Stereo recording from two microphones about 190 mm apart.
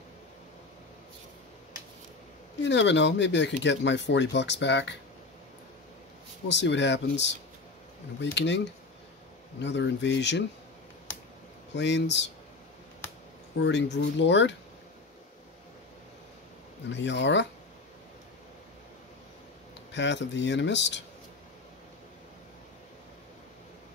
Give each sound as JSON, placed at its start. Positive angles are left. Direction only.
{"t": 2.6, "sound": "speech", "side_deg": 70}
{"t": 6.5, "sound": "speech", "side_deg": 70}
{"t": 11.7, "sound": "speech", "side_deg": 65}
{"t": 13.6, "sound": "speech", "side_deg": 65}
{"t": 16.9, "sound": "speech", "side_deg": 70}
{"t": 19.9, "sound": "speech", "side_deg": 70}